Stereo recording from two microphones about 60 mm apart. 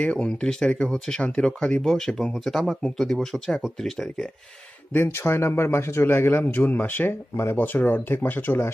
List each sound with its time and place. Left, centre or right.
0.0 s speech: centre
4.9 s a man's voice: left